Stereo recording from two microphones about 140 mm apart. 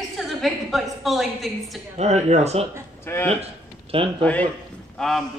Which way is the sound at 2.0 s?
50° right (ahead or behind).